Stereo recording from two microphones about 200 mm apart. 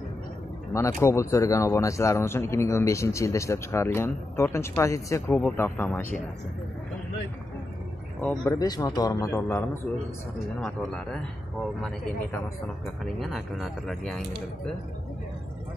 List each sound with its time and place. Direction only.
0.7 s speech: 15° left (ahead or behind)
8.2 s speech: 10° left (ahead or behind)
8.5 s speech: 20° left (ahead or behind); by 14.2 s centre (ahead or behind)